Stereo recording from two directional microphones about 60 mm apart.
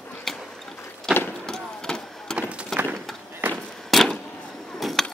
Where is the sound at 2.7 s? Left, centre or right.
Centre.